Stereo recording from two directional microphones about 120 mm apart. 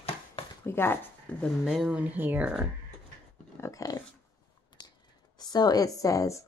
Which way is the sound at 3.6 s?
30° left (ahead or behind).